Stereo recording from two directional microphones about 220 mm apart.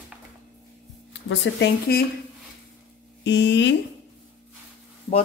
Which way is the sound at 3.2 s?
50° left (ahead or behind).